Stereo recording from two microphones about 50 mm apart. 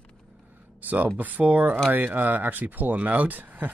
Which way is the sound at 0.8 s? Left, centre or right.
Right.